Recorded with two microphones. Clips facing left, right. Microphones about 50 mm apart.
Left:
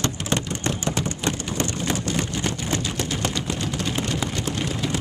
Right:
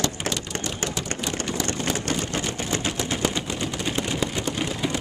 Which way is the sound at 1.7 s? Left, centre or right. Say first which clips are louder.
Even; right.